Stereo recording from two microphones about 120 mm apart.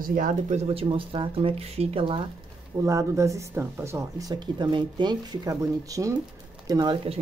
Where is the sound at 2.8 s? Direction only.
25° right (ahead or behind).